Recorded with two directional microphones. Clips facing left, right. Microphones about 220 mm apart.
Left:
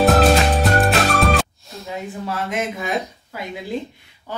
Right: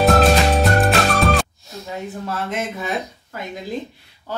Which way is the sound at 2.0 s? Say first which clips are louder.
Even; 10° left (ahead or behind).